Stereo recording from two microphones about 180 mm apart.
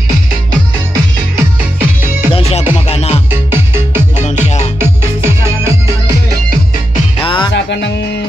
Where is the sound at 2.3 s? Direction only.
35° left (ahead or behind).